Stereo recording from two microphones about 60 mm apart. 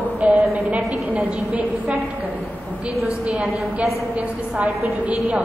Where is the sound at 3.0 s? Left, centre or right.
Centre.